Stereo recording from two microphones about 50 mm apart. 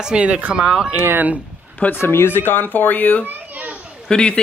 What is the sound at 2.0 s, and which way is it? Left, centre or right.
Speech, left.